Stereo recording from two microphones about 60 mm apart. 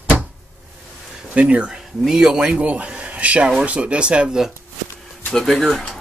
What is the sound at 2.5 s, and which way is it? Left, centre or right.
Speech, centre.